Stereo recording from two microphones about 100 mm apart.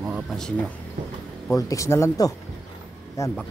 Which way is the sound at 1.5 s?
30° left (ahead or behind).